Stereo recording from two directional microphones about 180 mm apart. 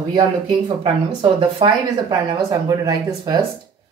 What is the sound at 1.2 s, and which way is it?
Speech, 30° right (ahead or behind).